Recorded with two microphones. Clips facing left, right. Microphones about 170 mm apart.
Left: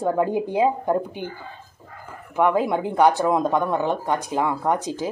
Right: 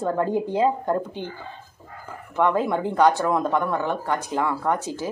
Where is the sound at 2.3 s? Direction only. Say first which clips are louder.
Left 1 dB; 15° left (ahead or behind).